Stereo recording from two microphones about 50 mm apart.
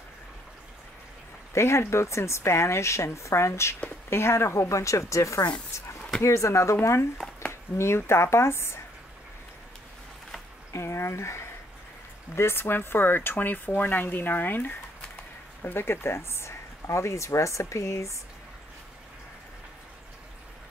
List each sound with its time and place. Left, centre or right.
1.5 s speech: left
10.7 s a sound: left
12.4 s speech: left
15.6 s speech: left